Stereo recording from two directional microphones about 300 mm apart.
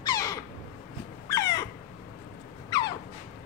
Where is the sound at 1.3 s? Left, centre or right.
Centre.